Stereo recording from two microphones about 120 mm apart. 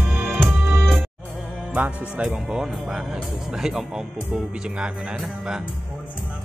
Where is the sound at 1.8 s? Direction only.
10° right (ahead or behind).